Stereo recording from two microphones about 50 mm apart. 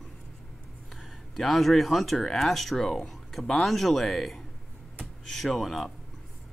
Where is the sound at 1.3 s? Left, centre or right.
Centre.